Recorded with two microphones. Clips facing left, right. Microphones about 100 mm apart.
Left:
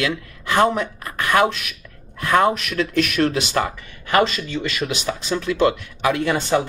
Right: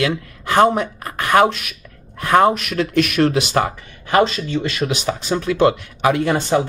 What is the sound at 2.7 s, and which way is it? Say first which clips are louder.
Speech: right 3 dB; 50° right (ahead or behind).